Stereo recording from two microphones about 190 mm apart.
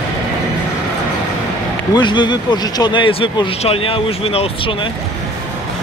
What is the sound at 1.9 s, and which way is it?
Speech, 25° left (ahead or behind).